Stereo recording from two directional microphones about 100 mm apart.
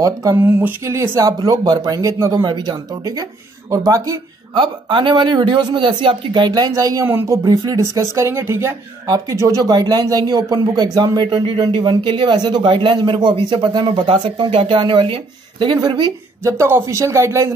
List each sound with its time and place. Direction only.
0.0 s speech: 35° right (ahead or behind)
0.4 s speech: 20° right (ahead or behind)
2.4 s speech: 45° right (ahead or behind)
4.6 s speech: 50° right (ahead or behind); by 7.1 s 35° right (ahead or behind)
7.1 s speech: 20° right (ahead or behind)
7.4 s speech: 40° right (ahead or behind); by 14.8 s 65° right (ahead or behind)
14.8 s speech: 55° right (ahead or behind)
16.4 s speech: 25° right (ahead or behind)